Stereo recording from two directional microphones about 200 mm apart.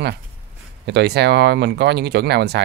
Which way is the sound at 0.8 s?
55° right (ahead or behind).